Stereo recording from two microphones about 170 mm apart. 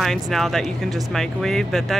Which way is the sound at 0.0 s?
Centre (ahead or behind).